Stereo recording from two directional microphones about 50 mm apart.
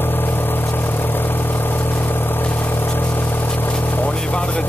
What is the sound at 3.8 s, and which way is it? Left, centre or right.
Boat, left.